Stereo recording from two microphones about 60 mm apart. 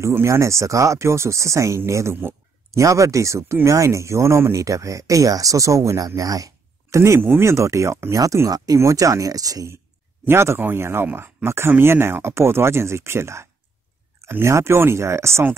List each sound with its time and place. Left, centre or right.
0.0 s speech: right
7.0 s speech: right
8.5 s speech: right
8.7 s speech: right
10.2 s speech: right